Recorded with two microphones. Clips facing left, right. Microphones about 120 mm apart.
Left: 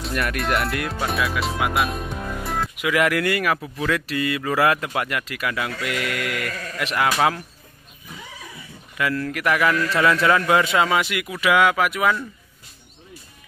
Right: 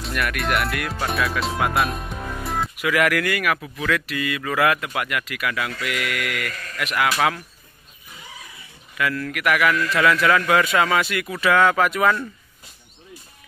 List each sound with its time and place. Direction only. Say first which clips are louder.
0.1 s speech: even; 30° left (ahead or behind)
1.0 s music: right 1 dB; centre (ahead or behind)
2.8 s speech: even; 20° left (ahead or behind)
8.9 s speech: left 1 dB; 25° left (ahead or behind); by 12.3 s 5° left (ahead or behind)